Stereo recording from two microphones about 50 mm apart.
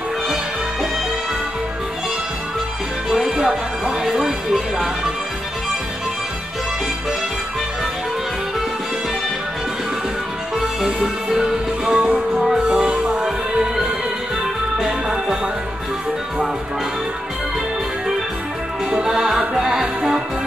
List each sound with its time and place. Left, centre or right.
3.2 s music: centre
10.6 s music: centre
18.9 s music: centre